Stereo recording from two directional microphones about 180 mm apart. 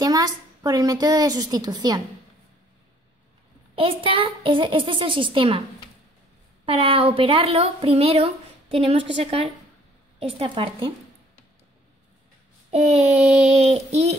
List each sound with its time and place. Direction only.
0.0 s a woman's voice: 20° right (ahead or behind)
3.7 s a woman's voice: 30° right (ahead or behind)
6.6 s a woman's voice: 30° right (ahead or behind)
13.1 s a sound: centre (ahead or behind)
13.5 s a woman's voice: 35° right (ahead or behind)